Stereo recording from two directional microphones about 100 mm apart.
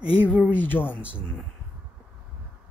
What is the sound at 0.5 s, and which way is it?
Speech, 20° left (ahead or behind).